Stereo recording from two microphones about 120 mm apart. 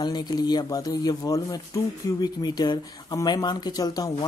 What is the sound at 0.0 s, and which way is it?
Speech, 35° left (ahead or behind).